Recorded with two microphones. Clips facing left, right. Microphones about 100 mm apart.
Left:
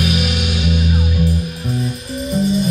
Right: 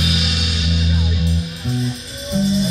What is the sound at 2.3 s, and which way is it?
Music, 50° left (ahead or behind).